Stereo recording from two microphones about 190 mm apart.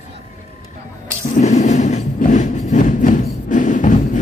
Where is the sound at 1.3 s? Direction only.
35° left (ahead or behind).